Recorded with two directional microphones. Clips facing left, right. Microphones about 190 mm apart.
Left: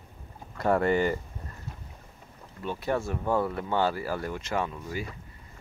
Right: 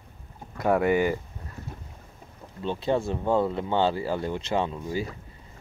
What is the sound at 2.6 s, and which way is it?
Speech, 25° right (ahead or behind).